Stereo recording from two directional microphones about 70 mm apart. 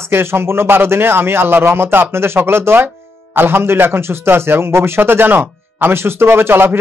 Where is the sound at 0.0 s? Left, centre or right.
Right.